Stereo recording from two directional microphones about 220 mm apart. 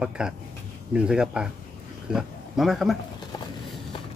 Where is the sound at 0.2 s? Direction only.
5° right (ahead or behind).